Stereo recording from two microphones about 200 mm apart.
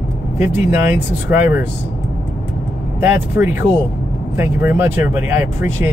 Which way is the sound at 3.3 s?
10° right (ahead or behind).